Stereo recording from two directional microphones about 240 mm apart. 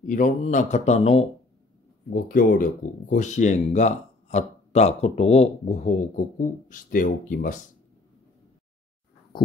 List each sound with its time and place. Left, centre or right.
0.0 s speech: left